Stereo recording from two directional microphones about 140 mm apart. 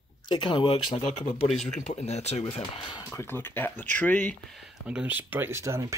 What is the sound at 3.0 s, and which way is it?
Speech, 20° left (ahead or behind).